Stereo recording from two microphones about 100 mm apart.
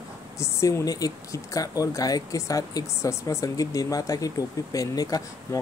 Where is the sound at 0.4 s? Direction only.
30° left (ahead or behind).